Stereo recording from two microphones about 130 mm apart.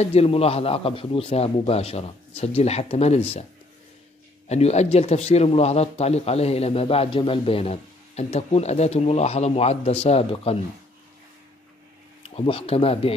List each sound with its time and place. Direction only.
0.0 s a man's voice: 50° left (ahead or behind)
4.5 s a man's voice: 55° left (ahead or behind)
12.2 s speech: 45° left (ahead or behind)